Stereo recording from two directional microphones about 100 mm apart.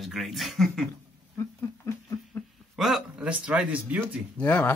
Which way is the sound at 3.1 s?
10° right (ahead or behind).